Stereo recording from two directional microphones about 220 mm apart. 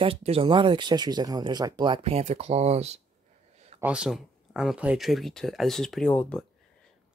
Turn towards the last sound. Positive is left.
turn(degrees=5)  # may be behind; listen again after turning